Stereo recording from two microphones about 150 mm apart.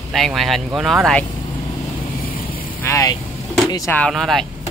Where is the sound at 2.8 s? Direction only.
20° left (ahead or behind).